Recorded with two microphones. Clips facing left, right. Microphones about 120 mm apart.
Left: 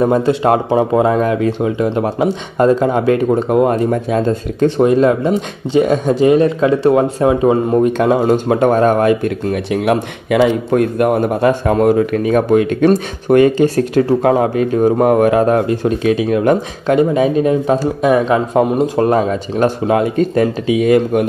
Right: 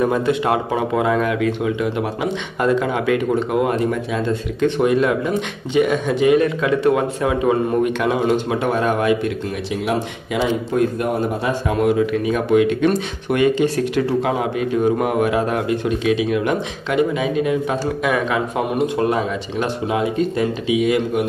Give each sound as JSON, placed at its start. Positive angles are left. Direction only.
{"t": 0.0, "sound": "speech", "side_deg": 30}